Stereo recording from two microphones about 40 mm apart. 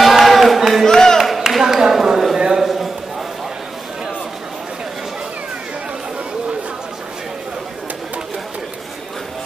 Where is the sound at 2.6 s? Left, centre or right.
Centre.